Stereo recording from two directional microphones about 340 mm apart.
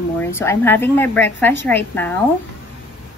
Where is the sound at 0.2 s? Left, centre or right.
Centre.